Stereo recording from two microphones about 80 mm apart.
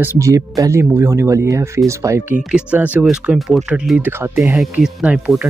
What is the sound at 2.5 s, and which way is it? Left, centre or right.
Speech, centre.